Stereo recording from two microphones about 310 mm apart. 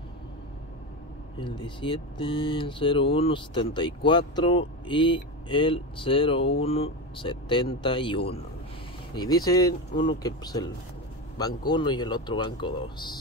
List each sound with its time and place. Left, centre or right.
1.4 s speech: centre